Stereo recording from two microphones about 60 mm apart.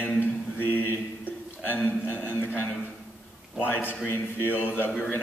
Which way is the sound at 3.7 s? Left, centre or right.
Left.